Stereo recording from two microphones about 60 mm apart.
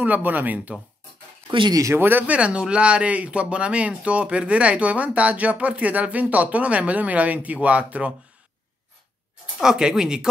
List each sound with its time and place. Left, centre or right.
0.0 s speech: right
1.7 s speech: right
2.0 s speech: right
2.3 s speech: centre
9.6 s speech: centre